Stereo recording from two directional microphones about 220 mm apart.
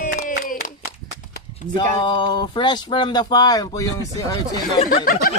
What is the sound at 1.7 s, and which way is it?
Speech, 20° left (ahead or behind).